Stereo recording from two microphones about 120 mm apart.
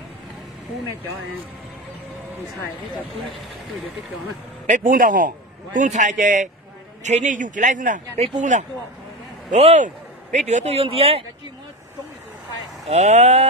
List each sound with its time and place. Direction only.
4.6 s speech: 90° right
7.0 s speech: 75° right (ahead or behind)
9.5 s speech: 75° right (ahead or behind); by 11.2 s 55° right (ahead or behind)
12.8 s speech: 70° right (ahead or behind)